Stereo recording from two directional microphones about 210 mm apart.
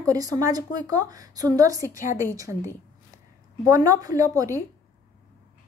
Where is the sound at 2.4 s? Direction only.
15° right (ahead or behind).